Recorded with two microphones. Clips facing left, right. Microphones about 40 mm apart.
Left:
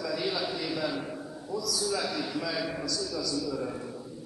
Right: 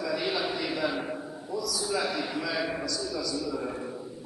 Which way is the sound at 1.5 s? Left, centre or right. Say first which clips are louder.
Even; centre.